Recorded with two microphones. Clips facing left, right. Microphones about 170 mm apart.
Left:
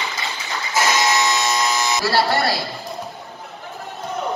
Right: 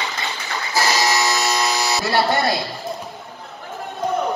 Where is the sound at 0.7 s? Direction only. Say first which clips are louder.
Left 1 dB; 35° right (ahead or behind).